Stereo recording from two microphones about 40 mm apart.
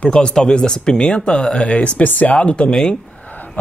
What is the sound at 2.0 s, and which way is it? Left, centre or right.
Speech, left.